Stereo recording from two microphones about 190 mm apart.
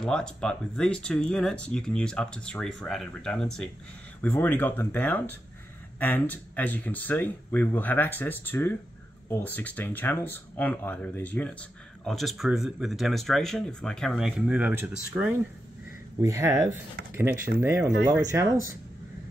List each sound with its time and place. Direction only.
0.0 s speech: 5° left (ahead or behind); by 18.6 s 15° right (ahead or behind)